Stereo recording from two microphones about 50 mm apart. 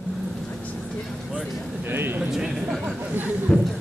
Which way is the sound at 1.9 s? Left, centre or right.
Right.